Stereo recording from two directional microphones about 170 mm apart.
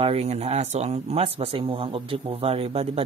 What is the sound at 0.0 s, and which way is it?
Speech, 35° right (ahead or behind).